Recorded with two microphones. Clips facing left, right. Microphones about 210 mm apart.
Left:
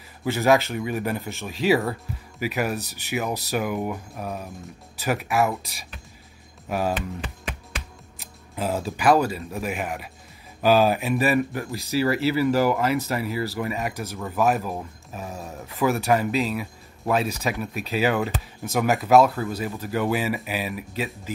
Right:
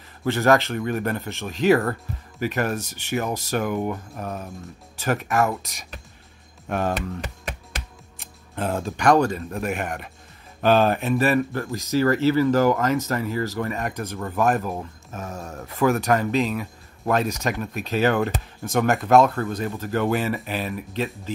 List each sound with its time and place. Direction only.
0.2 s speech: 5° left (ahead or behind)
6.7 s speech: 5° left (ahead or behind)
7.2 s music: 40° right (ahead or behind)
8.2 s speech: 5° left (ahead or behind)